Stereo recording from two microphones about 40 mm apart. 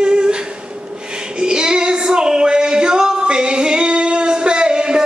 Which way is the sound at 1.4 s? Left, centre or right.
Centre.